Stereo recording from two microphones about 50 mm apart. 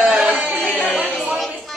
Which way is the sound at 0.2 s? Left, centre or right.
Centre.